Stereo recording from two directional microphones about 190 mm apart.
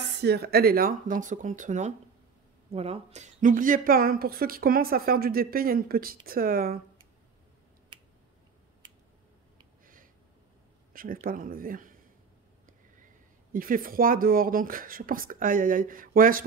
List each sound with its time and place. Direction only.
0.2 s speech: 60° right (ahead or behind)
7.9 s finger snapping: 25° right (ahead or behind)
10.9 s speech: 50° right (ahead or behind)
13.5 s speech: 50° right (ahead or behind)